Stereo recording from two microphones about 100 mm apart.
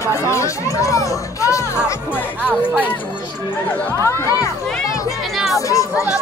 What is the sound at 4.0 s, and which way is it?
Speech, 30° left (ahead or behind).